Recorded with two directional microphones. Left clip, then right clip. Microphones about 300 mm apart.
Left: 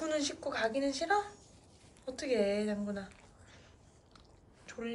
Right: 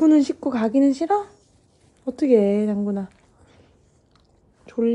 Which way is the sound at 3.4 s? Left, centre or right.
Centre.